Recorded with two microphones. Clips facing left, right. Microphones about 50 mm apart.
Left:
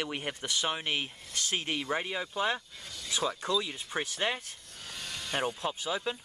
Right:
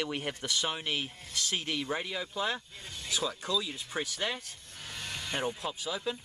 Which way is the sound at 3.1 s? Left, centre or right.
Left.